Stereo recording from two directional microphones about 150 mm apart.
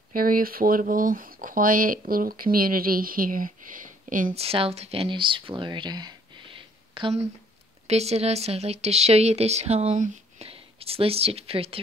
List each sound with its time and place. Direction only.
0.1 s speech: 70° right (ahead or behind)
4.4 s speech: 40° right (ahead or behind)
10.4 s speech: 40° right (ahead or behind)